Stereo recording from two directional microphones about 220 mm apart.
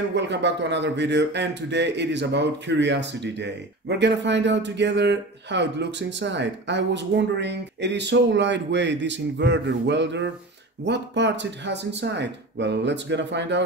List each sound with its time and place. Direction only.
0.1 s speech: 55° right (ahead or behind)